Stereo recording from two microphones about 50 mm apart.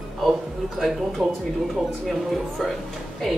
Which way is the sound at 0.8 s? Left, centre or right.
Centre.